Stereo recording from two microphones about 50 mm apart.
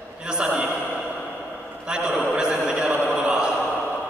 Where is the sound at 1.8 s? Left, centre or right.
Centre.